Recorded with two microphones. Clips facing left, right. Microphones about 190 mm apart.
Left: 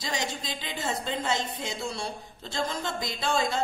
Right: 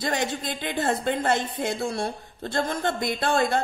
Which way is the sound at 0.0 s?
55° right (ahead or behind).